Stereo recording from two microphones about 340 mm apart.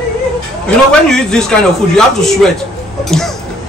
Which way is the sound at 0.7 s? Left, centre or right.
Centre.